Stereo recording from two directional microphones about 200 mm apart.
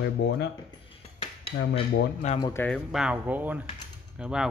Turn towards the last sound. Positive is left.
turn(degrees=-5)  # may be behind; listen again after turning